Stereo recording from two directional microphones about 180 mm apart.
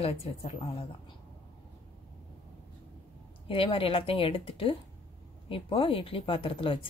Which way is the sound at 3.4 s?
30° left (ahead or behind).